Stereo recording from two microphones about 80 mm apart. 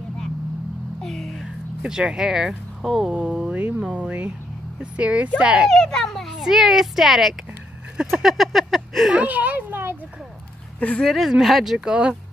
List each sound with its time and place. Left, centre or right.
1.0 s a sound: centre
1.8 s speech: centre
5.7 s a child's voice: centre
9.1 s a child's voice: centre
10.8 s speech: centre
11.1 s a child's voice: centre